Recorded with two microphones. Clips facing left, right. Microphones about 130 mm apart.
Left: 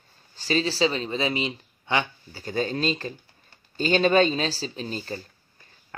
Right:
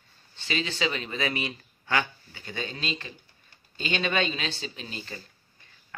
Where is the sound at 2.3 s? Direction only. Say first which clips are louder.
Left 9 dB; 40° left (ahead or behind).